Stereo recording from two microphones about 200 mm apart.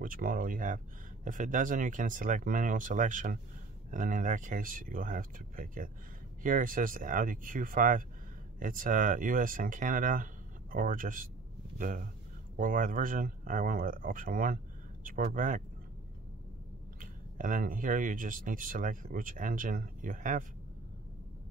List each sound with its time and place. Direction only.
0.0 s speech: 45° right (ahead or behind)
17.0 s speech: 40° right (ahead or behind)